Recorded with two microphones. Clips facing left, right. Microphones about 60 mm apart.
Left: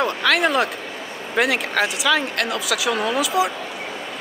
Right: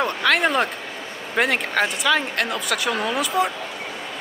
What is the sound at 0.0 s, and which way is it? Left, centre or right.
Speech, centre.